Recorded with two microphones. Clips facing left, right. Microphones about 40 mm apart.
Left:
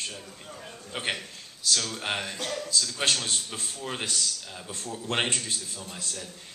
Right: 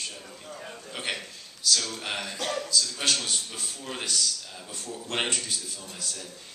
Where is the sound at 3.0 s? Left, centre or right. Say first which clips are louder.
Left 1 dB; left.